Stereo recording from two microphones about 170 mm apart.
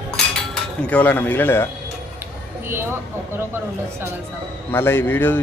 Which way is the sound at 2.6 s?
15° right (ahead or behind).